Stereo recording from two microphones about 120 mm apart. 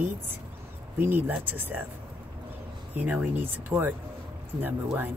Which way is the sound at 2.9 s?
10° right (ahead or behind).